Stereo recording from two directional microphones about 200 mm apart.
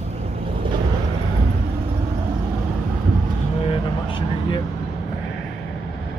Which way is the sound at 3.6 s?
25° left (ahead or behind).